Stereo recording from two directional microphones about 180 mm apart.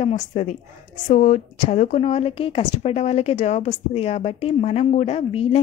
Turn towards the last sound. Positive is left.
turn(degrees=35)  # may be behind; listen again after turning